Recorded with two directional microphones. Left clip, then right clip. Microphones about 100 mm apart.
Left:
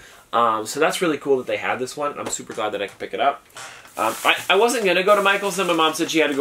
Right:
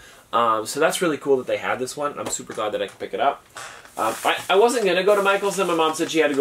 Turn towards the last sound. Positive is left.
turn(degrees=15)  # may be behind; listen again after turning